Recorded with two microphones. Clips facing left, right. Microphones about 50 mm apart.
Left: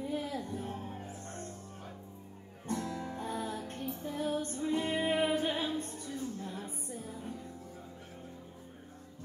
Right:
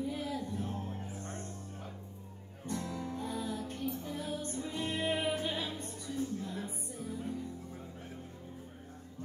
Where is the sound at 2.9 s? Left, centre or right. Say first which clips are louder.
Even; left.